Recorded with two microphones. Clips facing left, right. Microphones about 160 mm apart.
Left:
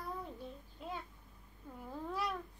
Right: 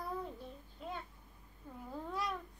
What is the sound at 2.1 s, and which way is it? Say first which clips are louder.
Cat: left 1 dB; 5° left (ahead or behind).